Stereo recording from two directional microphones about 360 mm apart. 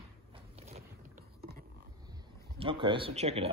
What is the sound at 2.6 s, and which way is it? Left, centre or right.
Speech, centre.